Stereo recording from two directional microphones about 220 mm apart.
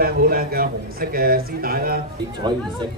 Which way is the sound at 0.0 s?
40° right (ahead or behind).